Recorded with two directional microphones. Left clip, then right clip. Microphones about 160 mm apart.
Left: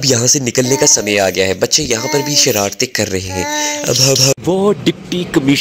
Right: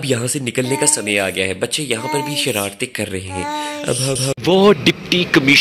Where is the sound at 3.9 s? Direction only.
30° left (ahead or behind).